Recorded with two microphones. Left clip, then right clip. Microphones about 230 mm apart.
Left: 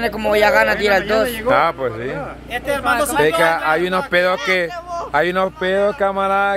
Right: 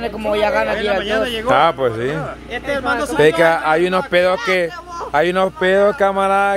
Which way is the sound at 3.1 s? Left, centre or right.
Right.